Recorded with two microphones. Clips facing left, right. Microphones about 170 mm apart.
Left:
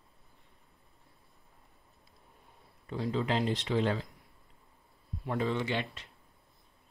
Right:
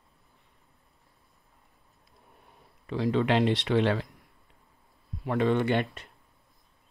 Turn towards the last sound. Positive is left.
turn(degrees=-55)  # may be behind; listen again after turning